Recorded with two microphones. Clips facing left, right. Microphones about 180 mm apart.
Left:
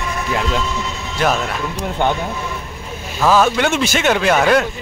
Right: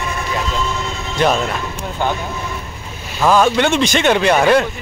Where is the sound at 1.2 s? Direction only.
5° left (ahead or behind).